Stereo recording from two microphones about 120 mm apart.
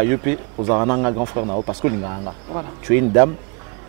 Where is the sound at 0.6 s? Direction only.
30° right (ahead or behind).